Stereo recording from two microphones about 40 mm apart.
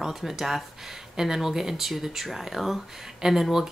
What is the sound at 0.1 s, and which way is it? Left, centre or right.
A woman's voice, centre.